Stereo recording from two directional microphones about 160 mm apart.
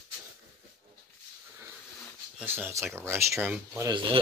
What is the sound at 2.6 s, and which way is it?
Speech, 15° right (ahead or behind).